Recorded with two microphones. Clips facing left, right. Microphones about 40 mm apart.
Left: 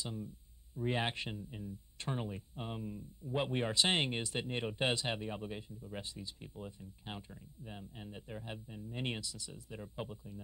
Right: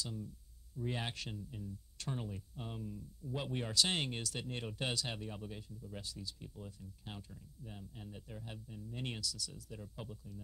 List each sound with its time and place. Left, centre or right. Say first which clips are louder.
0.0 s speech: left 1 dB; left